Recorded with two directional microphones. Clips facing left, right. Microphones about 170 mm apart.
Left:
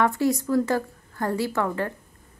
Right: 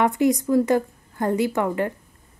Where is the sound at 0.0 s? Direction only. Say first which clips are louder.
Right 3 dB; 15° right (ahead or behind).